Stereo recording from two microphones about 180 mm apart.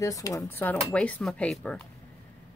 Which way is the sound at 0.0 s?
20° left (ahead or behind).